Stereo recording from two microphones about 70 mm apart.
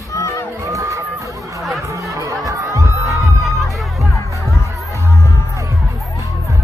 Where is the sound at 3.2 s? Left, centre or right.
Centre.